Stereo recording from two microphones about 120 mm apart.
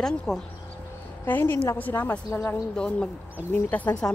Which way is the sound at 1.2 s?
15° left (ahead or behind).